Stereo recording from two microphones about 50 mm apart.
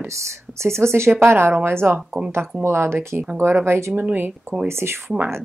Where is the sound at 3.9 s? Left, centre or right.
Right.